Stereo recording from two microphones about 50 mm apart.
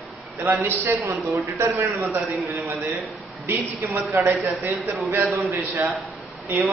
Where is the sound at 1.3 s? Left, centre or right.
Right.